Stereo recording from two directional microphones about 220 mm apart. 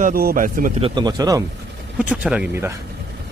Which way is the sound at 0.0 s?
40° right (ahead or behind).